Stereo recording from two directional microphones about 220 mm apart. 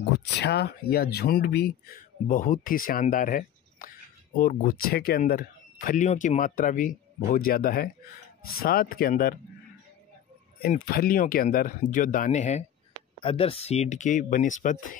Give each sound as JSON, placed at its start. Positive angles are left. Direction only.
{"t": 0.4, "sound": "speech", "side_deg": 50}
{"t": 10.6, "sound": "speech", "side_deg": 40}